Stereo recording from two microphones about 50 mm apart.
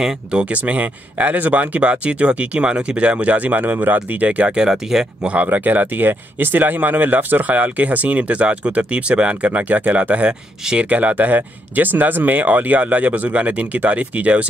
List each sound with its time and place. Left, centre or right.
0.0 s speech: centre
4.6 s speech: centre
5.2 s speech: right
10.6 s speech: centre
10.9 s speech: right